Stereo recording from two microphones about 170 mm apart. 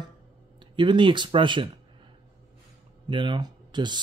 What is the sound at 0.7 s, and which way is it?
Speech, 30° right (ahead or behind).